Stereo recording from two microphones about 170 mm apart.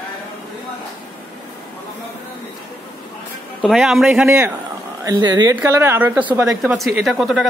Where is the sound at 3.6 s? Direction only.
Centre (ahead or behind).